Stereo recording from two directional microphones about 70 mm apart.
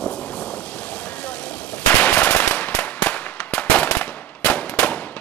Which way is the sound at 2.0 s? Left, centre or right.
Centre.